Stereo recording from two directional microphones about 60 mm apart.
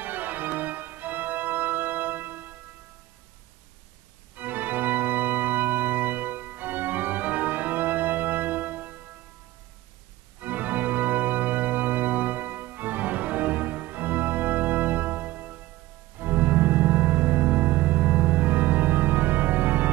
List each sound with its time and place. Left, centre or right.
0.0 s music: right
4.4 s organ: right
10.4 s organ: right
16.2 s music: right